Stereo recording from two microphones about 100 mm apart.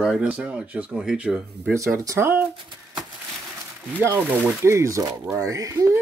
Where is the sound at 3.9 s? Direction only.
20° right (ahead or behind).